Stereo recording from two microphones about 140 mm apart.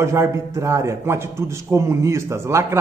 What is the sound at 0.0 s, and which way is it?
A man's voice, 20° right (ahead or behind).